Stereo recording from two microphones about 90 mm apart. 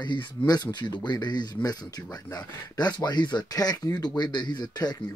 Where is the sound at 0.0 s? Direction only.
60° left (ahead or behind).